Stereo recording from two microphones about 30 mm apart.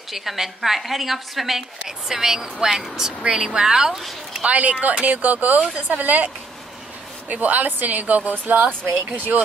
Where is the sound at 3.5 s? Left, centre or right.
Right.